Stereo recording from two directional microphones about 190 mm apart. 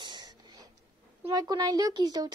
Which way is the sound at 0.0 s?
25° right (ahead or behind).